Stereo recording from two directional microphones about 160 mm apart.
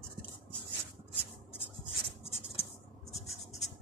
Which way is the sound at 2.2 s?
40° left (ahead or behind).